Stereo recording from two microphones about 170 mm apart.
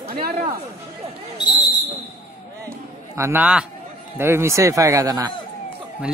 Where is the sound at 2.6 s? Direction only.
15° right (ahead or behind).